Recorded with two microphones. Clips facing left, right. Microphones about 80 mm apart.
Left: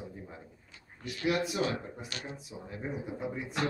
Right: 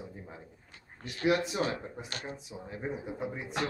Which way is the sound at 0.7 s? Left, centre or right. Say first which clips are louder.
Left 4 dB; right.